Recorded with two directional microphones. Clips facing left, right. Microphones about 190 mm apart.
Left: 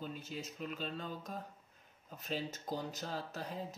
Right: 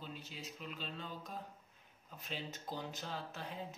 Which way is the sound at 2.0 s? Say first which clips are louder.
Left 6 dB; 40° left (ahead or behind).